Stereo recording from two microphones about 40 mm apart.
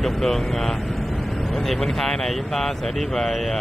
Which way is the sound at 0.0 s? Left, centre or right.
Centre.